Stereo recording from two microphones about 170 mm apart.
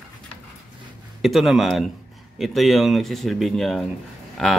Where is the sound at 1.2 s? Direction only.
Centre (ahead or behind).